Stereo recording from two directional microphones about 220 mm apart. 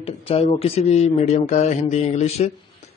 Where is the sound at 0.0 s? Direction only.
25° left (ahead or behind).